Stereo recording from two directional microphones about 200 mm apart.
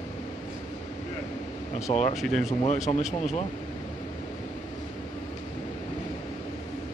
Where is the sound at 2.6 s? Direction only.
35° left (ahead or behind).